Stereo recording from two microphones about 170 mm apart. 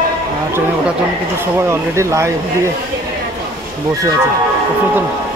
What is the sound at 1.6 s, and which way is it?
Speech, 15° right (ahead or behind).